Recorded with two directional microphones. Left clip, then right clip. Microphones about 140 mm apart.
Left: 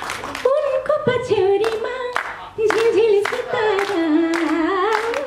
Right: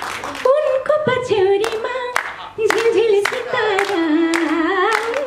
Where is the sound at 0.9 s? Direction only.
5° right (ahead or behind).